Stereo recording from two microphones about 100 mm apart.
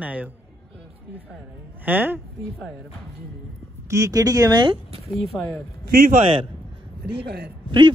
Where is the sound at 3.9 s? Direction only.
35° right (ahead or behind).